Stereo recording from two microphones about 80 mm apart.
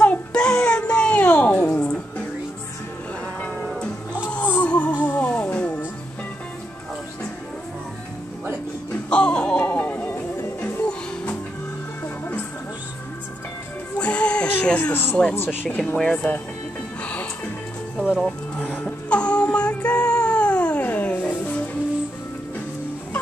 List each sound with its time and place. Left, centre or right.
0.0 s a sound: centre
4.3 s music: left
8.9 s music: centre
13.9 s music: centre
16.0 s speech: centre
17.0 s music: centre
18.1 s speech: centre
18.9 s music: centre